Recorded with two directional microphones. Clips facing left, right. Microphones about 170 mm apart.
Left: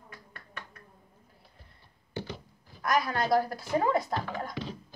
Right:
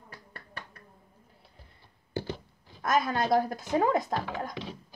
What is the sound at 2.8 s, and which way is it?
A woman's voice, 20° right (ahead or behind).